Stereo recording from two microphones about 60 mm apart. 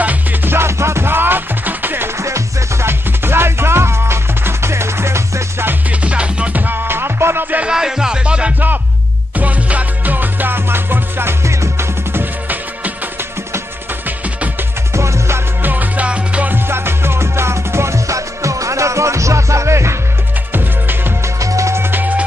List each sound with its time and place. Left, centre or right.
0.0 s music: right
2.1 s music: right
5.9 s music: right
7.7 s music: centre; by 11.3 s right
11.4 s music: right
12.1 s music: right
14.0 s music: right
14.9 s music: right
15.6 s music: right
16.5 s music: right
20.5 s music: right
21.4 s music: right